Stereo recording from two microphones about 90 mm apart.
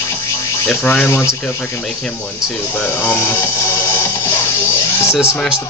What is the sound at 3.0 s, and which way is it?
Speech, 20° left (ahead or behind).